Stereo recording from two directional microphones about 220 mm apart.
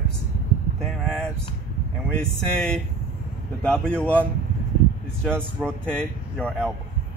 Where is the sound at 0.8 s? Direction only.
Centre (ahead or behind).